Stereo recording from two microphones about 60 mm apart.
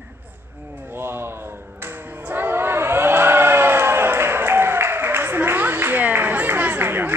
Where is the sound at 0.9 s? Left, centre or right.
Right.